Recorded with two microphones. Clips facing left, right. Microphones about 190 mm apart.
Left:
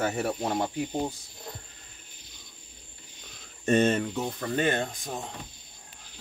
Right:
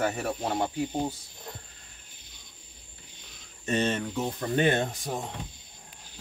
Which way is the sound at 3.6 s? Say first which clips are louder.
Left 5 dB; 50° left (ahead or behind).